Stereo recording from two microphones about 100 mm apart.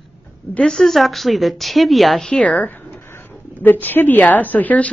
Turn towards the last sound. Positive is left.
turn(degrees=15)  # may be behind; listen again after turning